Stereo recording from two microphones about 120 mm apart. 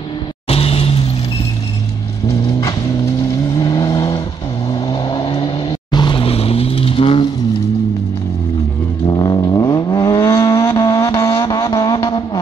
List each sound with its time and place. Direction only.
0.5 s vehicle: 55° left (ahead or behind)
3.2 s vehicle: 25° left (ahead or behind)
4.9 s vehicle: 45° left (ahead or behind)
9.0 s vehicle: 35° left (ahead or behind)